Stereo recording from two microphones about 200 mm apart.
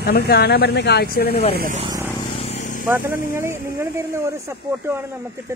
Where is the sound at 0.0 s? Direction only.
55° left (ahead or behind).